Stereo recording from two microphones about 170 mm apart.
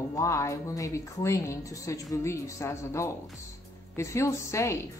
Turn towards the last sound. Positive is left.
turn(degrees=15)  # may be behind; listen again after turning